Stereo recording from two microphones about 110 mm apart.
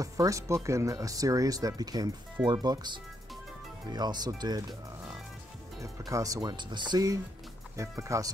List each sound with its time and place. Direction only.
0.0 s speech: 30° right (ahead or behind)
5.8 s speech: 30° right (ahead or behind)
6.5 s speech: 45° right (ahead or behind)